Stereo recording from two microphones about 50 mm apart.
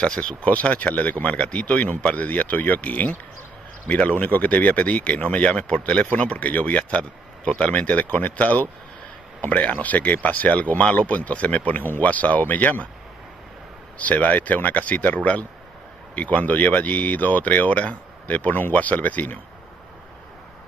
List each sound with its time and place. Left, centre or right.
0.0 s speech: centre
13.9 s speech: left
16.2 s speech: left